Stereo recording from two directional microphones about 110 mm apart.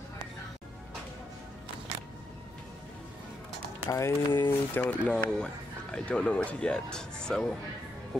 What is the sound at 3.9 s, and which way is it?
Speech, 25° left (ahead or behind).